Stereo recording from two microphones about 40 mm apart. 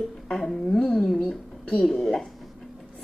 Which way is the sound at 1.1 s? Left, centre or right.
Centre.